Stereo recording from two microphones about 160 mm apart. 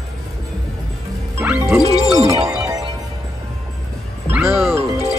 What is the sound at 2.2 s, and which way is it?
Music, 20° right (ahead or behind).